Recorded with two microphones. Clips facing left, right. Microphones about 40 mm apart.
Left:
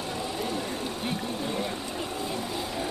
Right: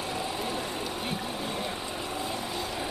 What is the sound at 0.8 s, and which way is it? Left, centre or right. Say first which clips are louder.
Pump: left 1 dB; centre.